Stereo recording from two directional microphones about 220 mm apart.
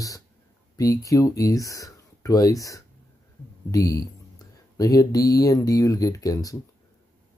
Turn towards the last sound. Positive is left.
turn(degrees=15)  # may be behind; listen again after turning